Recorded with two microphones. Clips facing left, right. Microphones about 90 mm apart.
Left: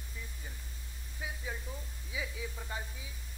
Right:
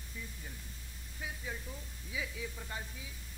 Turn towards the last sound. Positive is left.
turn(degrees=5)  # may be behind; listen again after turning